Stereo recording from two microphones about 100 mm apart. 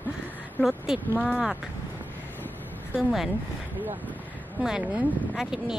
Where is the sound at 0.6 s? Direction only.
20° left (ahead or behind).